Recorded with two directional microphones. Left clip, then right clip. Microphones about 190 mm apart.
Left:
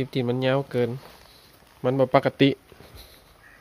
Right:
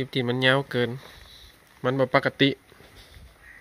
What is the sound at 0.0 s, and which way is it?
Speech, centre (ahead or behind).